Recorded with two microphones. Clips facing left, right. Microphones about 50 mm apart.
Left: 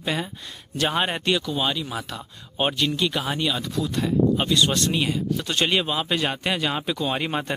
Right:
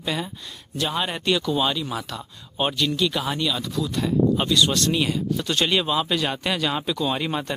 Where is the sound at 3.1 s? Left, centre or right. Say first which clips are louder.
Even; centre.